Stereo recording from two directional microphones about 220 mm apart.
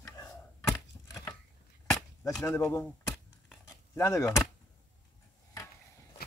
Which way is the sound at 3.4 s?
15° left (ahead or behind).